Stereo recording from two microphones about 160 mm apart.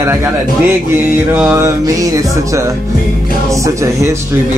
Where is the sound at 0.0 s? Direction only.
15° right (ahead or behind).